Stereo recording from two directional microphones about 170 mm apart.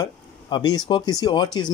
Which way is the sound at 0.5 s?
25° left (ahead or behind).